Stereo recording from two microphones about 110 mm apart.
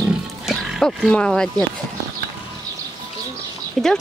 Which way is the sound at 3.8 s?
5° left (ahead or behind).